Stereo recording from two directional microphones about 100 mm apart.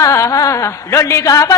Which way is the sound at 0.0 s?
30° left (ahead or behind).